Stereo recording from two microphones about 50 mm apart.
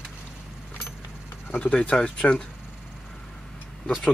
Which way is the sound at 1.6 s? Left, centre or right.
Left.